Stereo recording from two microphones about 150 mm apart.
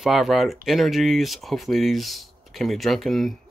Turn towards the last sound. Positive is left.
turn(degrees=0)  # may be behind; listen again after turning